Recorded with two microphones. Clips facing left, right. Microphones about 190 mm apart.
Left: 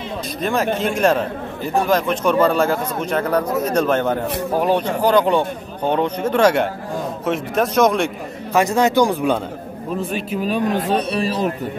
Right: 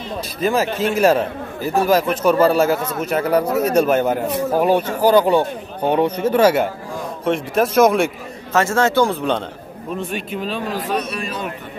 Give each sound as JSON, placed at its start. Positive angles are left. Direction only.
{"t": 0.4, "sound": "speech", "side_deg": -5}
{"t": 8.5, "sound": "speech", "side_deg": 15}
{"t": 10.9, "sound": "a man's voice", "side_deg": 30}